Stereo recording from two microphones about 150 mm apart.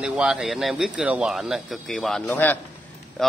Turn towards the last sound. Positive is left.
turn(degrees=0)  # may be behind; listen again after turning